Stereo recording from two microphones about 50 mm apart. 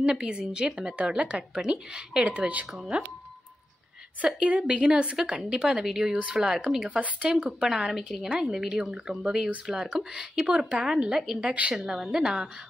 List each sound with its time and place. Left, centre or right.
0.0 s a woman's voice: centre
4.2 s a woman's voice: right
5.5 s a woman's voice: centre
7.0 s a woman's voice: right; by 12.4 s centre